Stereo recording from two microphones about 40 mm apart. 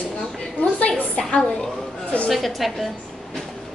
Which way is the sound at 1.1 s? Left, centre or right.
Left.